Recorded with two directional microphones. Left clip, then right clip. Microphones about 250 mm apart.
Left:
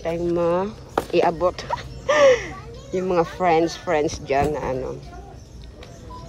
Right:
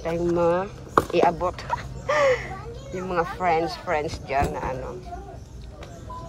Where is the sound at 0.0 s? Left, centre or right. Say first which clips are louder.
Left 1 dB; centre.